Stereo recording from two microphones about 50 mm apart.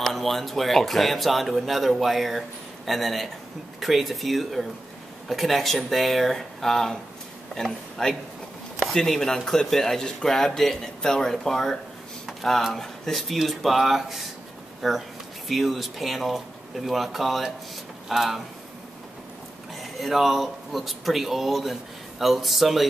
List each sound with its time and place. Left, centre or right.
0.0 s speech: centre
19.7 s speech: centre